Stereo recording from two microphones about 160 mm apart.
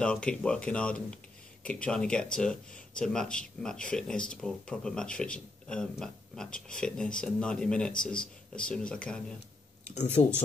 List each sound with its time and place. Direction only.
0.0 s speech: 5° left (ahead or behind)
9.9 s speech: 40° left (ahead or behind)